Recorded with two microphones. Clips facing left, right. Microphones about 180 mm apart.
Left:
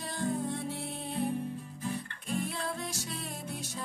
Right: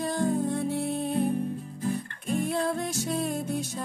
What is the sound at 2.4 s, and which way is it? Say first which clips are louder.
Music: right 9 dB; 50° right (ahead or behind).